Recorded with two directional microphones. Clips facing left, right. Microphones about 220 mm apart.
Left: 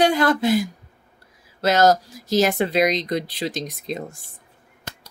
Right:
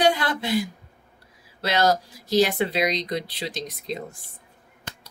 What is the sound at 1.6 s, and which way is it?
Speech, 45° left (ahead or behind).